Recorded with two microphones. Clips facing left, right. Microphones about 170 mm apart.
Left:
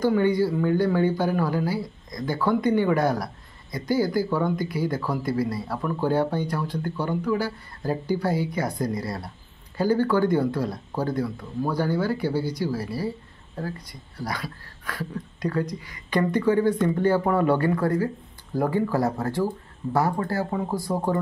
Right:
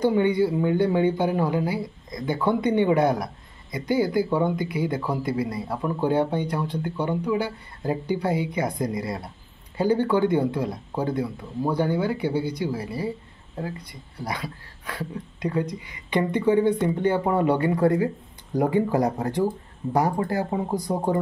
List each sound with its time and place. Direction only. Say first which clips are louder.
0.0 s speech: right 1 dB; 20° right (ahead or behind)
13.6 s speech: even; 25° right (ahead or behind)